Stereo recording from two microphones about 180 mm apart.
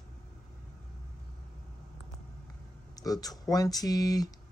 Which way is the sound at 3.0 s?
20° left (ahead or behind).